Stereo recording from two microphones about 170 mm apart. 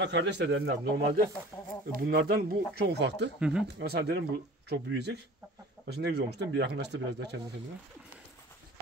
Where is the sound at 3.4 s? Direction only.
5° right (ahead or behind).